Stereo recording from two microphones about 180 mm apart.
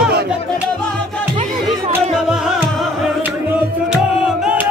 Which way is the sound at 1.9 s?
5° right (ahead or behind).